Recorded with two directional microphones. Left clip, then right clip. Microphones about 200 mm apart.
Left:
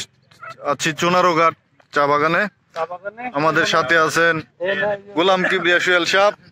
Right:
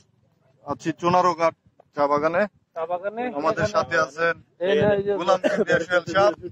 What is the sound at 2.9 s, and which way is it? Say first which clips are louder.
Speech: right 2 dB; 45° left (ahead or behind).